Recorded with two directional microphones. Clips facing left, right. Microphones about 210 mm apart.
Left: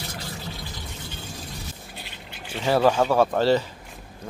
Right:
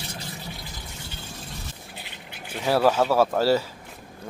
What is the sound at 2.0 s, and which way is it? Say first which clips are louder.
Speech: left 1 dB; 10° right (ahead or behind).